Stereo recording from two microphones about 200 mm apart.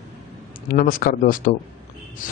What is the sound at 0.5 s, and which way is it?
Speech, 45° left (ahead or behind).